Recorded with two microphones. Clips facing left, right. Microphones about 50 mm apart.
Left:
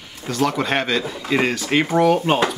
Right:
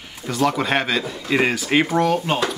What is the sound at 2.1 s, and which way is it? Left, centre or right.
Speech, centre.